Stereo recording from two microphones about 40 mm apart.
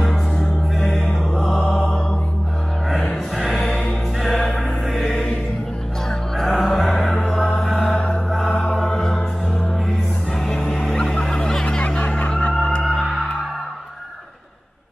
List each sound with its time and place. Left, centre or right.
0.9 s music: centre
3.3 s music: centre
6.0 s music: centre
7.1 s music: left
7.6 s chant: centre
8.5 s music: left
8.9 s music: centre
10.3 s music: centre
11.9 s snicker: left
12.8 s music: centre